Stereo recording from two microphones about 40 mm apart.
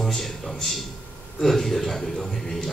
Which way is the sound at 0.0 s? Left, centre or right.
Centre.